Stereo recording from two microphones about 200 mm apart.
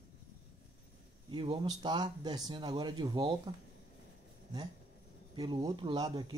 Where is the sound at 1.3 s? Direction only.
25° right (ahead or behind).